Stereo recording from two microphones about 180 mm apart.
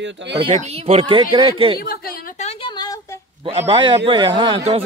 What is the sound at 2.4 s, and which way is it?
Speech, 30° left (ahead or behind).